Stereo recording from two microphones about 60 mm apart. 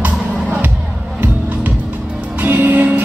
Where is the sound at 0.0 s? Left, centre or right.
Right.